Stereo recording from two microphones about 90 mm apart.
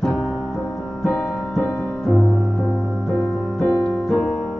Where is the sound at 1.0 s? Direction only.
Centre (ahead or behind).